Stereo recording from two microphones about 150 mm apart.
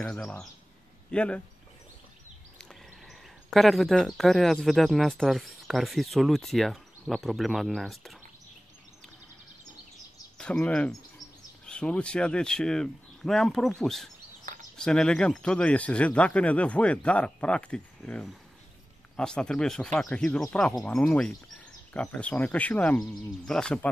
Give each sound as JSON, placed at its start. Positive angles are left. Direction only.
{"t": 0.0, "sound": "speech", "side_deg": 5}
{"t": 2.7, "sound": "speech", "side_deg": 0}
{"t": 10.3, "sound": "speech", "side_deg": 5}
{"t": 14.4, "sound": "a sound", "side_deg": -60}
{"t": 14.8, "sound": "speech", "side_deg": 5}